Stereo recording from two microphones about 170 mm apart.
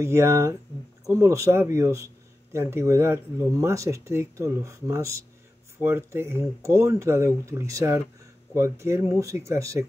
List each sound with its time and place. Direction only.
0.0 s speech: 15° right (ahead or behind)